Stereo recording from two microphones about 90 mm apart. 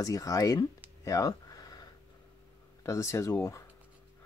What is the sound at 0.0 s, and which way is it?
Speech, 40° left (ahead or behind).